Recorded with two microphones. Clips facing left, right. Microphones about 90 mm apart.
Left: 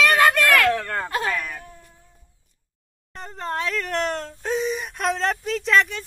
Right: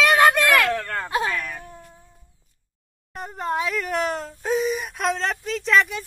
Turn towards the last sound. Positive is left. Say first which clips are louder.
# even
turn(degrees=0)  # may be behind; listen again after turning